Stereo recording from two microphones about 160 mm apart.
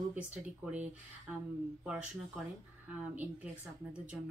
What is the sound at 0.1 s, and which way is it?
Speech, 10° right (ahead or behind).